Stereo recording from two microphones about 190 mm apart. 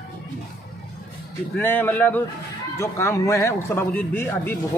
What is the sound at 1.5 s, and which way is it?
A man's voice, 10° left (ahead or behind).